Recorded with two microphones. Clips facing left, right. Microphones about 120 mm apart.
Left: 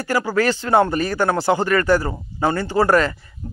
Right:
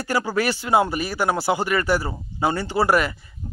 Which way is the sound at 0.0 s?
15° right (ahead or behind).